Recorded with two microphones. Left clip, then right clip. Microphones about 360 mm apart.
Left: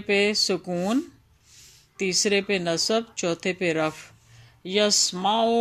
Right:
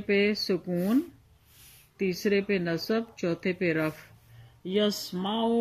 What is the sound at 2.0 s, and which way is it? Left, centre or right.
Speech, left.